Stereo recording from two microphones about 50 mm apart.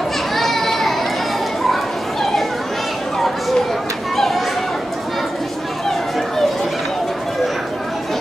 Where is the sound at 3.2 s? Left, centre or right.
Centre.